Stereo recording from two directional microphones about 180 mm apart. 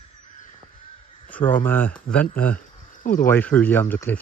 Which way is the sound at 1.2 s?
10° left (ahead or behind).